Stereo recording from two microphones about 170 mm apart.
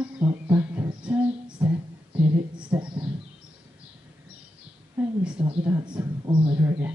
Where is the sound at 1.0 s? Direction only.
10° right (ahead or behind).